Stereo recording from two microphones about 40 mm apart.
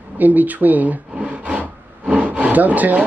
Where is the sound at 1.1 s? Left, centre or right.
Right.